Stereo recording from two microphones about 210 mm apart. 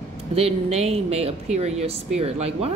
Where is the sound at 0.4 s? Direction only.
30° right (ahead or behind).